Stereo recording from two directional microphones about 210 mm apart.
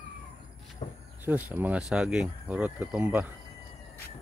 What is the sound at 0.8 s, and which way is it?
Speech, 25° left (ahead or behind).